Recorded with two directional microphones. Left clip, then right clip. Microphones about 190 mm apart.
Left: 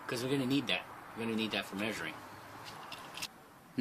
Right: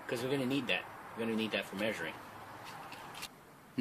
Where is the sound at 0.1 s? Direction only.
40° left (ahead or behind).